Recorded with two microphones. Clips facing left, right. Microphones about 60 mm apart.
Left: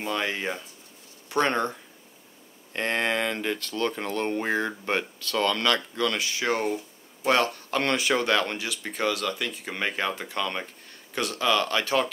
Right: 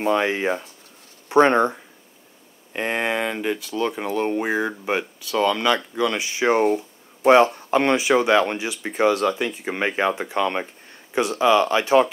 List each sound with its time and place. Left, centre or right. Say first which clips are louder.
0.0 s speech: right 8 dB; right
2.7 s speech: right 3 dB; centre